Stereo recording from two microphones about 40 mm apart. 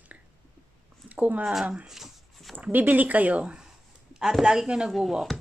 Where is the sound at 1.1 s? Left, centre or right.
Right.